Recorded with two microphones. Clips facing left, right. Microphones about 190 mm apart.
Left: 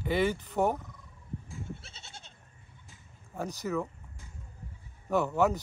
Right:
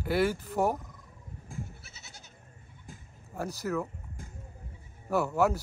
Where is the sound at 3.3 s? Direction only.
5° right (ahead or behind).